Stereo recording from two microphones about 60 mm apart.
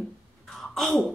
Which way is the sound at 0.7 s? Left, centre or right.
Centre.